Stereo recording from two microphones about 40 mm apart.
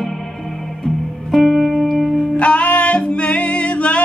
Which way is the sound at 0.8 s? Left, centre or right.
Centre.